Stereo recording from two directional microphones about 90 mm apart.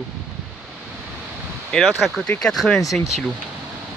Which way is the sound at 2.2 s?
10° left (ahead or behind).